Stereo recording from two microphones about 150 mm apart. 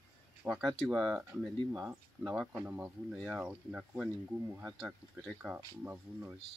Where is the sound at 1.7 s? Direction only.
15° right (ahead or behind).